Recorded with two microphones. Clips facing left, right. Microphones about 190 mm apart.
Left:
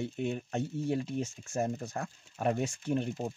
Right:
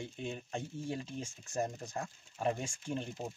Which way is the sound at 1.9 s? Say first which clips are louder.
Left 3 dB; 60° left (ahead or behind).